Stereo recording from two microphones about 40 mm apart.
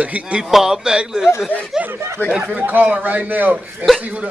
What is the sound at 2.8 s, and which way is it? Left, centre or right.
Speech, right.